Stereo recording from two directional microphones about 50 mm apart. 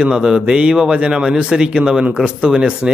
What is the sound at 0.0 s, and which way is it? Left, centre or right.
A man's voice, centre.